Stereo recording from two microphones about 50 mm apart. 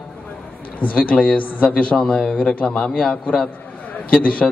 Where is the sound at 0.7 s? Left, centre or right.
Left.